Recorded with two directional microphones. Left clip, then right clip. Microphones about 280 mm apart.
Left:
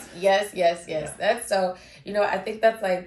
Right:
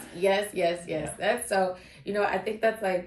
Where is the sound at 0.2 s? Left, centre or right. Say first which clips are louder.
Left 5 dB; centre.